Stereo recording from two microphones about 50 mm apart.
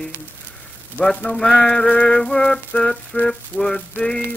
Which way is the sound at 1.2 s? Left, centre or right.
Centre.